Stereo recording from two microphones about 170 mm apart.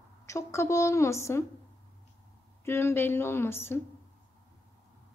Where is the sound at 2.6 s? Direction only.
15° left (ahead or behind).